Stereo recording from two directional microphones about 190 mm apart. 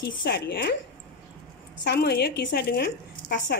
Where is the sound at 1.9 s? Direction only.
60° left (ahead or behind).